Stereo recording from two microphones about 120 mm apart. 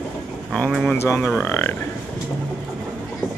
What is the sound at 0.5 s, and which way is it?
Speech, 5° left (ahead or behind).